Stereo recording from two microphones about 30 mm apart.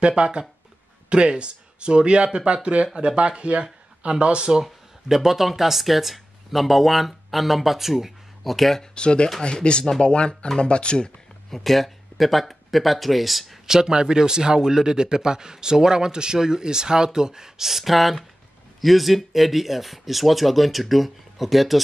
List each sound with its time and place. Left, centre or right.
0.0 s speech: right
5.0 s speech: centre
8.9 s speech: left
11.5 s speech: centre
13.7 s speech: right
17.6 s speech: centre